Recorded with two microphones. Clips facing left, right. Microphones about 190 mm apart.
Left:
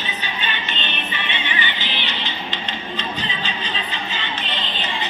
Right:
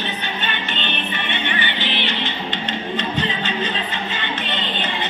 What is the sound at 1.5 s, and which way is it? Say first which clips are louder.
Music: right 3 dB; 60° right (ahead or behind).